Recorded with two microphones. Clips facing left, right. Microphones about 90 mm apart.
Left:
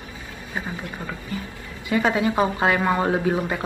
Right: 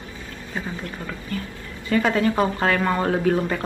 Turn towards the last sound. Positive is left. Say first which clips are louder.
# right 1 dB
turn(degrees=15)  # may be behind; listen again after turning